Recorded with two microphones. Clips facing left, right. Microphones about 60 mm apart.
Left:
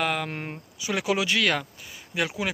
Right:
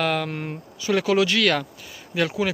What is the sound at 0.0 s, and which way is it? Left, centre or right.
Speech, centre.